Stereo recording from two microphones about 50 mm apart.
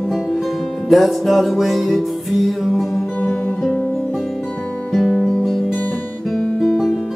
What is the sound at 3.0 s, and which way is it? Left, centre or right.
Music, left.